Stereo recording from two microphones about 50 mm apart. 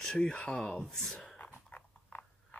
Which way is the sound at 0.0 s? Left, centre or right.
Centre.